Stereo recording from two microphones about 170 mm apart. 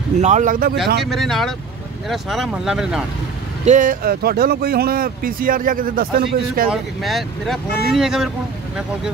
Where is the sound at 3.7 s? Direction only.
50° right (ahead or behind).